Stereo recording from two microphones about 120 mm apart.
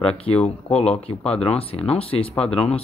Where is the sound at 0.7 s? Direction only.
55° left (ahead or behind).